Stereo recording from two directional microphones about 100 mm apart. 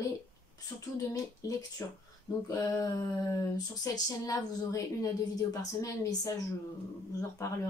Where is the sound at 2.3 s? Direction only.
45° left (ahead or behind).